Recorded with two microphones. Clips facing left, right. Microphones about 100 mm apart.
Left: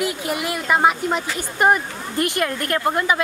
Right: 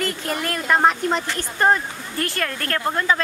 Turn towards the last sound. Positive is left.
turn(degrees=15)  # may be behind; listen again after turning